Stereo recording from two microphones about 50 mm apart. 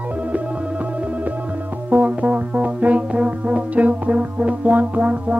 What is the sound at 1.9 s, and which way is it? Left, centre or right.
Music, right.